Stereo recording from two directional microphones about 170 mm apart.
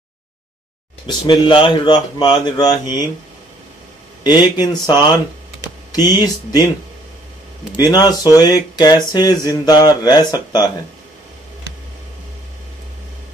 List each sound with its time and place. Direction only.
1.0 s speech: 25° left (ahead or behind)
4.2 s speech: 25° left (ahead or behind)
6.1 s speech: 25° left (ahead or behind)
7.7 s speech: 25° left (ahead or behind)